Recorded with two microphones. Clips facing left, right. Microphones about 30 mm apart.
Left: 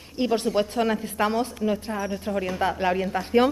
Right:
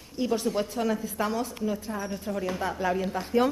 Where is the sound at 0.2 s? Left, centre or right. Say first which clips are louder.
Left 4 dB; left.